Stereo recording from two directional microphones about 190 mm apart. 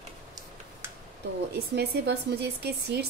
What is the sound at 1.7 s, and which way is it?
Speech, 60° right (ahead or behind).